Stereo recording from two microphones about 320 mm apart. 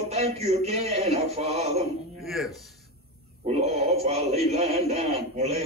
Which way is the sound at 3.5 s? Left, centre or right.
Centre.